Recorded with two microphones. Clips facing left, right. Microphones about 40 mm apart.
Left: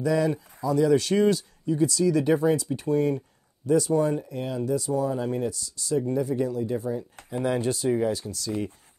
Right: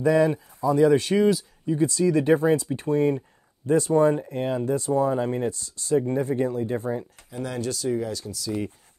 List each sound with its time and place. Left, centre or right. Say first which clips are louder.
0.0 s speech: right 4 dB; right
1.1 s speech: right 1 dB; centre
1.7 s speech: right 1 dB; right
7.2 s speech: left 5 dB; centre
8.3 s speech: right 1 dB; centre